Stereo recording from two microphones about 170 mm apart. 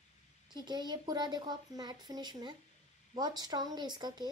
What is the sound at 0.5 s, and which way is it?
A woman's voice, 25° right (ahead or behind).